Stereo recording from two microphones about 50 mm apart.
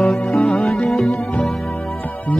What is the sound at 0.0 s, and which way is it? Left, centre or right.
Music, centre.